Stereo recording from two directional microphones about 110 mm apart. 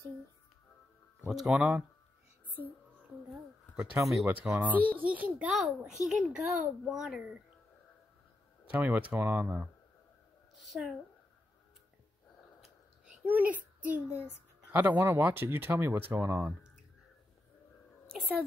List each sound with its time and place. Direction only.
1.3 s a child's voice: 5° right (ahead or behind)
3.7 s a child's voice: 10° right (ahead or behind)
5.5 s a child's voice: centre (ahead or behind)
8.6 s a child's voice: 15° right (ahead or behind)
10.7 s speech: centre (ahead or behind)
12.6 s a sound: 10° right (ahead or behind)
14.7 s speech: 15° right (ahead or behind)